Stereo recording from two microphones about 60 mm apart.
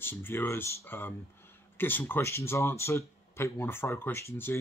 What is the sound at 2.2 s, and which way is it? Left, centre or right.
Speech, left.